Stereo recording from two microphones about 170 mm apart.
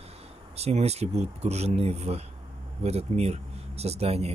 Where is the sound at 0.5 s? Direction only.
40° right (ahead or behind).